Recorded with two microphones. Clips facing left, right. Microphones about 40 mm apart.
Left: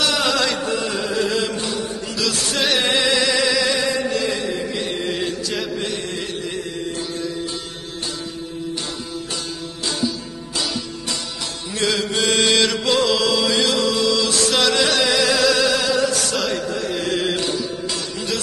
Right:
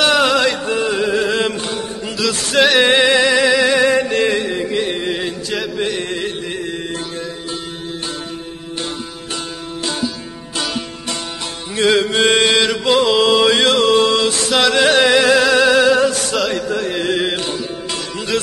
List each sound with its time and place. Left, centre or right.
0.2 s chant: right
0.8 s music: right
1.1 s music: right
2.1 s music: centre
2.9 s music: right
3.8 s a sound: right
4.8 s music: right
6.0 s music: right
11.7 s music: right
12.4 s mantra: centre; by 14.3 s right
14.5 s music: centre
14.8 s music: right
16.3 s a sound: centre
16.9 s music: right